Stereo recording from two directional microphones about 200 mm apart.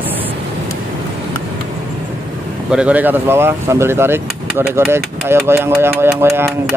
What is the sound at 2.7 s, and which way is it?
Speech, 5° right (ahead or behind).